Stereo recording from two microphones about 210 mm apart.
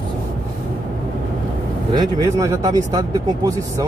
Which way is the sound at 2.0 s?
15° right (ahead or behind).